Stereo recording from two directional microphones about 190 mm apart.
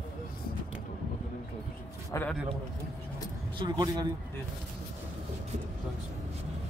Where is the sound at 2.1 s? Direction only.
10° left (ahead or behind).